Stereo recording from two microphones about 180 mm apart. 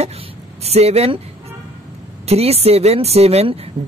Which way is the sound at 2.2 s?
35° right (ahead or behind).